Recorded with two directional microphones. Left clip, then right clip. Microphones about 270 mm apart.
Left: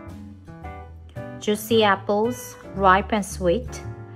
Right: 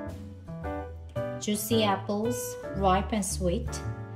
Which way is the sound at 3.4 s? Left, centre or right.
Left.